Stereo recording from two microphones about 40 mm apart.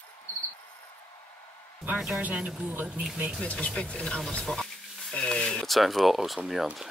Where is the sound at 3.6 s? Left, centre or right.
Left.